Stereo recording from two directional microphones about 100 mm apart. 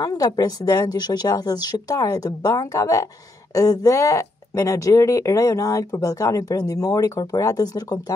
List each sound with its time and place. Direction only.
0.0 s speech: 40° left (ahead or behind)